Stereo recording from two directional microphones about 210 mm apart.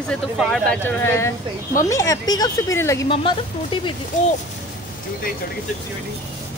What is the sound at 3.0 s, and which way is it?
Speech, 25° left (ahead or behind).